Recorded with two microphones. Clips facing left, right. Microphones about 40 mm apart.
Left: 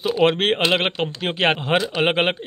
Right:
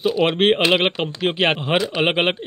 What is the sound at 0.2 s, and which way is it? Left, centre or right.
Speech, centre.